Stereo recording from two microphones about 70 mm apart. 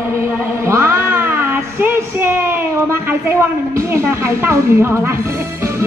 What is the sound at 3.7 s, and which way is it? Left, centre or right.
Music, right.